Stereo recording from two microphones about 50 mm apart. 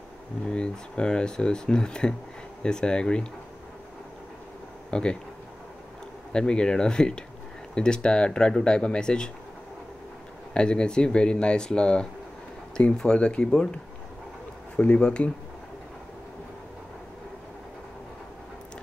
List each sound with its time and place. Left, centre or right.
0.5 s speech: centre
4.9 s speech: left
6.3 s speech: centre
10.5 s speech: centre
14.8 s speech: left